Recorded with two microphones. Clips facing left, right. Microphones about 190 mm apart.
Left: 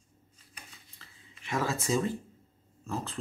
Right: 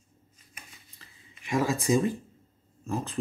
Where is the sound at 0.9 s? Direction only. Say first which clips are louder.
Right 1 dB; 15° right (ahead or behind).